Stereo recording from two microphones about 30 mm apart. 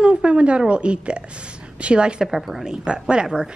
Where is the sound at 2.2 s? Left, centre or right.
Centre.